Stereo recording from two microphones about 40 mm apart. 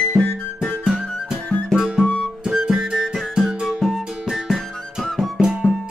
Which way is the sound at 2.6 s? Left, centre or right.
Centre.